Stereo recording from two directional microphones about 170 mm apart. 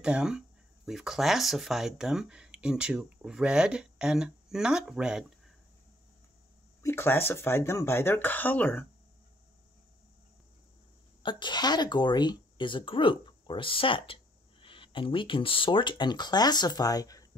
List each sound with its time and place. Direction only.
0.0 s speech: 5° right (ahead or behind)
6.8 s speech: 15° left (ahead or behind)
11.2 s speech: 25° left (ahead or behind)